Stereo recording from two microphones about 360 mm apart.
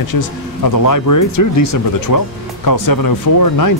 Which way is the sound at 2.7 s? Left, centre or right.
Left.